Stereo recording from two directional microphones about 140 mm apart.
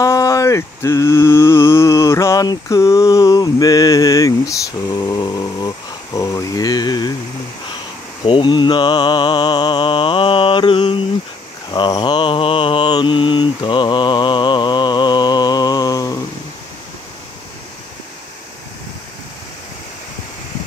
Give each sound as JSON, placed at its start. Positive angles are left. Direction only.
{"t": 0.0, "sound": "mantra", "side_deg": 25}
{"t": 6.1, "sound": "a sound", "side_deg": 25}
{"t": 8.3, "sound": "mantra", "side_deg": 35}